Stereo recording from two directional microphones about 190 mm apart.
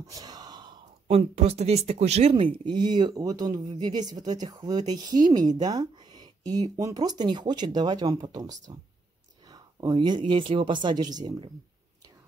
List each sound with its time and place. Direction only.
0.0 s a woman's voice: 20° right (ahead or behind)